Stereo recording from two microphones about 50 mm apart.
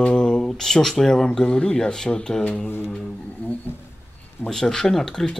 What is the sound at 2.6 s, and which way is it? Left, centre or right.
Speech, left.